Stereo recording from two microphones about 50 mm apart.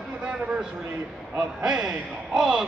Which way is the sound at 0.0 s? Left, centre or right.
Right.